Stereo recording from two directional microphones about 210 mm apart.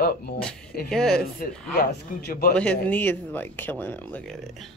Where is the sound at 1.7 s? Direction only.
45° left (ahead or behind).